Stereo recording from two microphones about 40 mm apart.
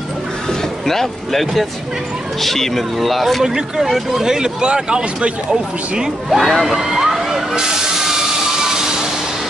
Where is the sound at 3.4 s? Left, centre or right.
Centre.